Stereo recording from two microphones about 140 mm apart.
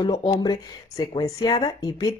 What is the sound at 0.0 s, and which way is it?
A woman's voice, 35° left (ahead or behind).